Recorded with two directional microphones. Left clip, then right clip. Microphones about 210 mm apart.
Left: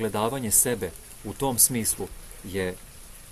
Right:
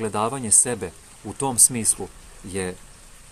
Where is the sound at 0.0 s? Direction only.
5° right (ahead or behind).